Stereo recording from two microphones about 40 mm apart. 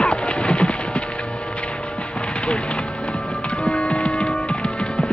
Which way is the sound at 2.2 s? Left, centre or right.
Left.